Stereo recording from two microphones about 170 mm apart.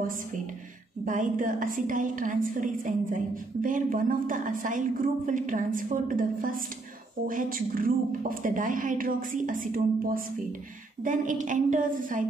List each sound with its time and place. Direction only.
1.0 s a woman's voice: 50° right (ahead or behind)